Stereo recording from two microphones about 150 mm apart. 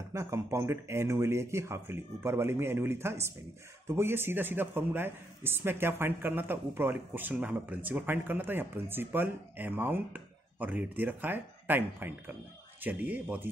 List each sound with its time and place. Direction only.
0.1 s speech: 20° right (ahead or behind)